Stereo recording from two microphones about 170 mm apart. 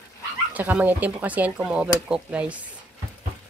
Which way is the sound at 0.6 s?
10° right (ahead or behind).